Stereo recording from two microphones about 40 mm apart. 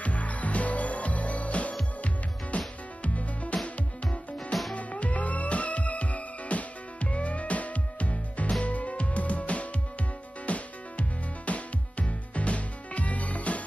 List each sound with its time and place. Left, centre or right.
0.0 s music: left